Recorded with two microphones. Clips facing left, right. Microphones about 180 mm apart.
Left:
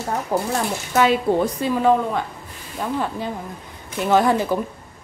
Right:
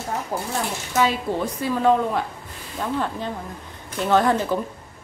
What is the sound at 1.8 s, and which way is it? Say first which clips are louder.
A woman's voice: even; 5° left (ahead or behind).